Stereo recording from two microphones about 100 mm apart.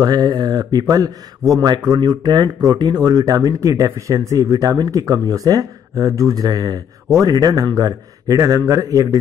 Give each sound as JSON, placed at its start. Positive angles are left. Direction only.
{"t": 0.0, "sound": "speech", "side_deg": -40}